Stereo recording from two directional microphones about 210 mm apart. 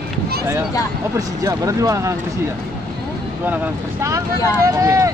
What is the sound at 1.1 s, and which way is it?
Speech, 15° right (ahead or behind).